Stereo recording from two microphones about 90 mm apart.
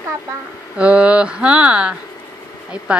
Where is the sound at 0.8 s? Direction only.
15° right (ahead or behind).